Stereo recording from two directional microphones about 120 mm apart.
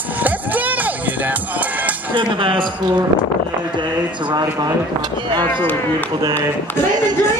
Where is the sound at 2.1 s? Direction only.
45° right (ahead or behind).